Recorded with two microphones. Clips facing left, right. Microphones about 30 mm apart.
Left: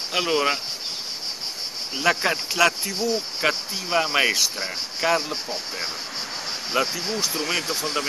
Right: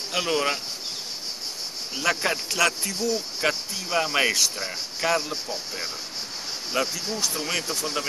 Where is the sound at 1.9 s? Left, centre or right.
Centre.